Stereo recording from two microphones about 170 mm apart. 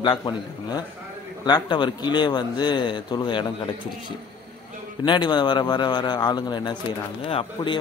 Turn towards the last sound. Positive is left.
turn(degrees=30)  # may be behind; listen again after turning